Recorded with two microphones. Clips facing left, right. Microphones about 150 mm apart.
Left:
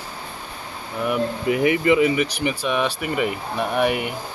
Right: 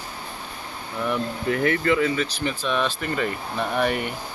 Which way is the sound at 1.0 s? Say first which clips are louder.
Left 3 dB; 15° left (ahead or behind).